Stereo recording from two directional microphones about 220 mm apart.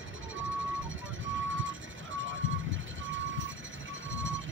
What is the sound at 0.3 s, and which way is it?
Vehicle, 60° right (ahead or behind).